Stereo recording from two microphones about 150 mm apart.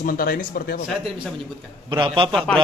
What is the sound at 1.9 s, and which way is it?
Speech, 35° right (ahead or behind).